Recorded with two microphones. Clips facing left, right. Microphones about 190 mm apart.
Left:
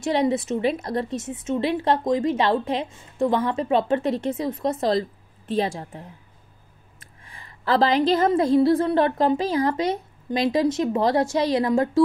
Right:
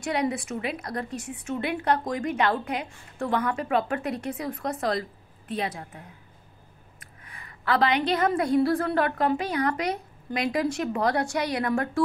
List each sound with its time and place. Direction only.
0.0 s a woman's voice: 25° left (ahead or behind)
7.0 s a sound: 30° left (ahead or behind)
8.1 s a woman's voice: 25° left (ahead or behind)